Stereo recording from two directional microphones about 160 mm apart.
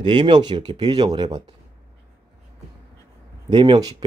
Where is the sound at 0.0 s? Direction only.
30° right (ahead or behind).